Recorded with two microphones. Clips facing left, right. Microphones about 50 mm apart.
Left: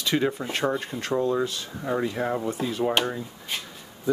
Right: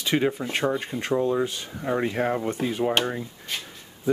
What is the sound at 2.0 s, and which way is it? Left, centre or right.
Speech, right.